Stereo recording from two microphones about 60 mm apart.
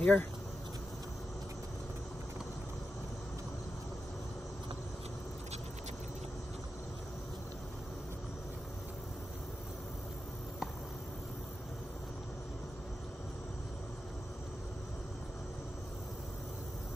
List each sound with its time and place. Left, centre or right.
0.0 s speech: left